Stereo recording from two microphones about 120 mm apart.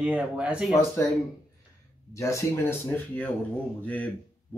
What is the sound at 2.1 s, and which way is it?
Speech, 25° left (ahead or behind).